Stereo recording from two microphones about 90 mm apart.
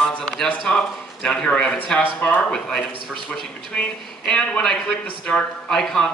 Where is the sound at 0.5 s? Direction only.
10° left (ahead or behind).